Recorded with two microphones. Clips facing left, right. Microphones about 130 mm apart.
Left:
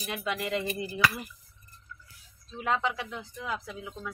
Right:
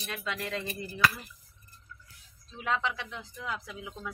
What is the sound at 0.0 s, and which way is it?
Speech, 15° left (ahead or behind).